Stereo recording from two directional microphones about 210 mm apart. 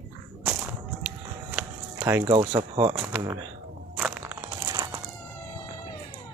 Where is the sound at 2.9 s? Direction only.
10° right (ahead or behind).